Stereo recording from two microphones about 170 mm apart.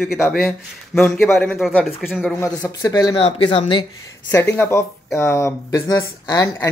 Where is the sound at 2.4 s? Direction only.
20° left (ahead or behind).